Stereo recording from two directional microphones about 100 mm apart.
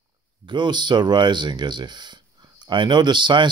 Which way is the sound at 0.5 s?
50° right (ahead or behind).